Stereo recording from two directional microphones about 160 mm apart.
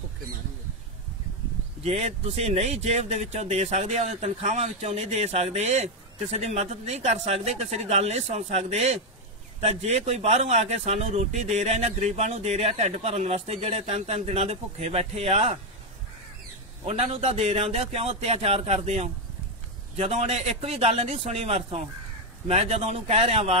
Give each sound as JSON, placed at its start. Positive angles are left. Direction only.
{"t": 1.8, "sound": "a man's voice", "side_deg": -40}
{"t": 16.8, "sound": "a man's voice", "side_deg": -35}